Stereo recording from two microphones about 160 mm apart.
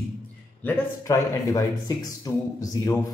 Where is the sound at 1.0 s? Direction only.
20° left (ahead or behind).